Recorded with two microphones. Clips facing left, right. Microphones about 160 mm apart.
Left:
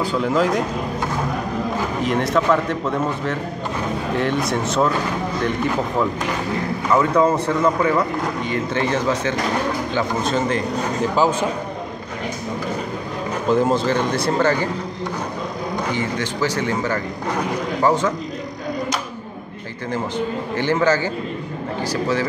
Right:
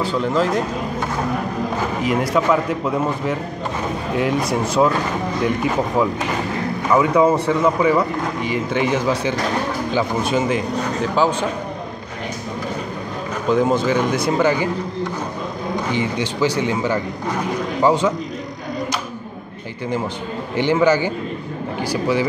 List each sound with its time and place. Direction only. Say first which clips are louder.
0.1 s speech: left 1 dB; centre (ahead or behind)
2.0 s speech: right 1 dB; 10° right (ahead or behind)
11.1 s speech: even; 10° left (ahead or behind)
13.5 s speech: right 1 dB; centre (ahead or behind)
13.8 s speech: right 1 dB; 10° right (ahead or behind)
15.9 s speech: right 2 dB; 15° right (ahead or behind)
20.5 s speech: right 3 dB; 15° right (ahead or behind)